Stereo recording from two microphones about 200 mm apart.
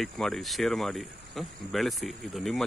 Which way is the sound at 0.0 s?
Centre (ahead or behind).